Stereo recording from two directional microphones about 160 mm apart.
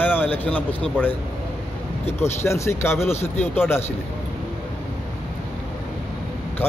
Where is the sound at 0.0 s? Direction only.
10° left (ahead or behind).